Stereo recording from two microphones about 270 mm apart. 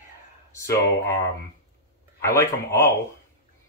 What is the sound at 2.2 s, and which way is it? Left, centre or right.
Speech, centre.